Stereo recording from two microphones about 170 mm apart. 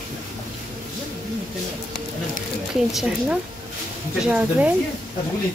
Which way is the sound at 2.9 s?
Centre (ahead or behind).